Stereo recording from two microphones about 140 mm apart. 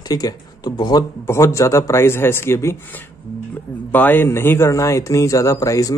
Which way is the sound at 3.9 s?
15° left (ahead or behind).